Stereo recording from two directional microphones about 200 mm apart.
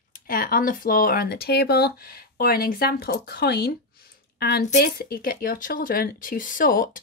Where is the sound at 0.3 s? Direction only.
45° left (ahead or behind).